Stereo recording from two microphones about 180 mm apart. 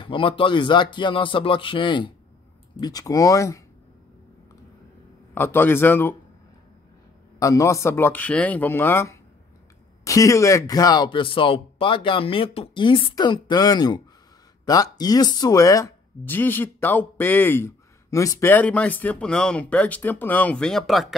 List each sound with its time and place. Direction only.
0.0 s speech: 30° left (ahead or behind)
5.3 s speech: 10° left (ahead or behind)
7.3 s speech: 15° left (ahead or behind); by 21.1 s centre (ahead or behind)